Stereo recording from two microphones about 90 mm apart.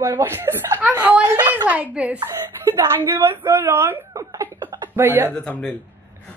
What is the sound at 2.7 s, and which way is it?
A woman's voice, 35° right (ahead or behind).